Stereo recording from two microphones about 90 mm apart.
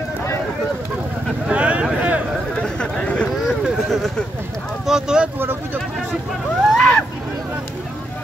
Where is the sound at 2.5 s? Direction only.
10° left (ahead or behind).